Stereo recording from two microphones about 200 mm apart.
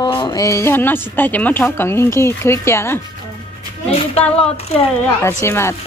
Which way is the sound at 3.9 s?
30° left (ahead or behind).